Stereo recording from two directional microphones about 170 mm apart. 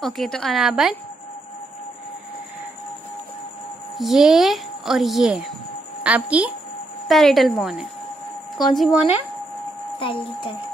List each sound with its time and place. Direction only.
0.0 s speech: centre (ahead or behind)
4.0 s a woman's voice: centre (ahead or behind)
9.9 s speech: 30° left (ahead or behind)